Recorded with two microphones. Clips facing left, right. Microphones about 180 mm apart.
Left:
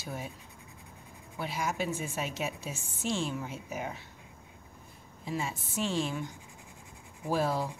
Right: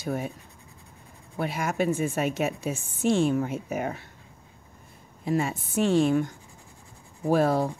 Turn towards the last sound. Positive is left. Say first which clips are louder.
# right 8 dB
turn(degrees=-55)  # may be behind; listen again after turning